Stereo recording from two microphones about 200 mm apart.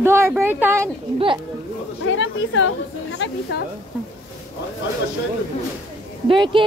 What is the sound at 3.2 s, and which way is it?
Speech, 60° left (ahead or behind).